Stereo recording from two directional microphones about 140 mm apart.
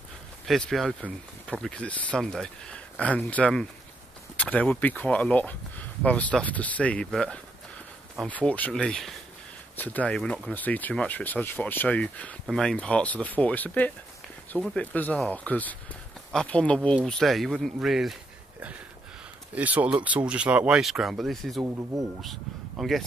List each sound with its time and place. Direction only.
0.5 s speech: centre (ahead or behind)
19.5 s speech: 10° right (ahead or behind)
21.6 s speech: 15° right (ahead or behind)
22.2 s speech: centre (ahead or behind)